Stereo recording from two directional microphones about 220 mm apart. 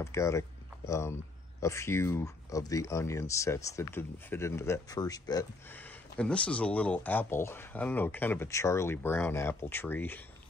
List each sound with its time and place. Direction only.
0.0 s speech: 15° left (ahead or behind)